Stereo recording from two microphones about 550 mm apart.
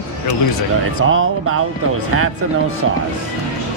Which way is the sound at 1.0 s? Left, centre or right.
Right.